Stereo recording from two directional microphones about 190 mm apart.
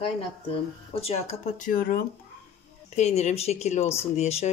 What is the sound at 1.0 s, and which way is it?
Speech, 35° left (ahead or behind).